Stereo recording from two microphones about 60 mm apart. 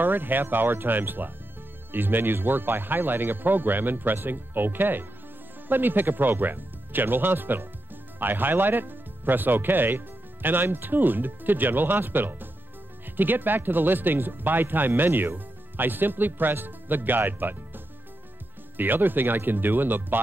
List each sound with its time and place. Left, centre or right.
0.0 s speech: right